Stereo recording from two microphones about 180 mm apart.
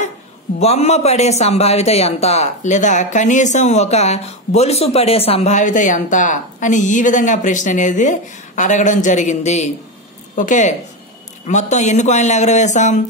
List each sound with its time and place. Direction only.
0.6 s a man's voice: 35° left (ahead or behind)